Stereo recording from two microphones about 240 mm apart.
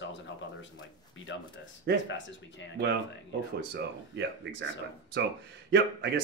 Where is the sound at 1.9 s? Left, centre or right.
Right.